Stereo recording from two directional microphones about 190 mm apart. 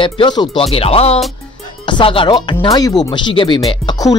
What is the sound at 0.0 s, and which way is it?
Speech, 25° left (ahead or behind).